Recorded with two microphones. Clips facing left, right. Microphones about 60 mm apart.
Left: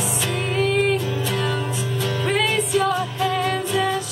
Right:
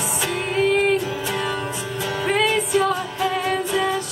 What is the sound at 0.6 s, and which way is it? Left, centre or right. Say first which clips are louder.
Music: right 2 dB; centre.